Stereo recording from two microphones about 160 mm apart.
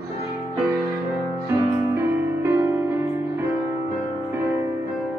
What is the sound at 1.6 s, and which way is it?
Music, 15° right (ahead or behind).